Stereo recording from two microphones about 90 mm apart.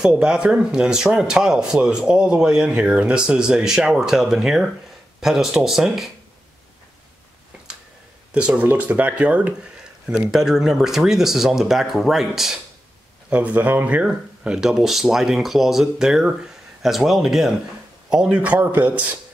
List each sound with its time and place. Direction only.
0.0 s speech: 10° right (ahead or behind)
8.3 s speech: 10° right (ahead or behind)
10.3 s speech: 5° right (ahead or behind)
13.3 s speech: 15° right (ahead or behind)